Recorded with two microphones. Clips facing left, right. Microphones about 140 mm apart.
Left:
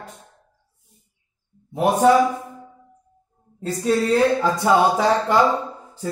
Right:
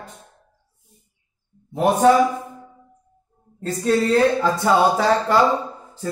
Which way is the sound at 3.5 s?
10° left (ahead or behind).